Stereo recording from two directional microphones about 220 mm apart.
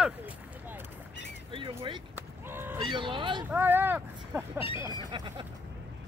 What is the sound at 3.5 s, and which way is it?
Speech, 10° right (ahead or behind).